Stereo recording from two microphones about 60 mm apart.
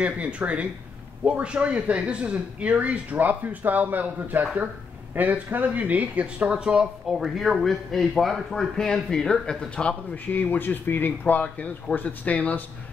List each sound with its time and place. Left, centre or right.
0.0 s a man's voice: right; by 9.9 s centre
10.1 s speech: left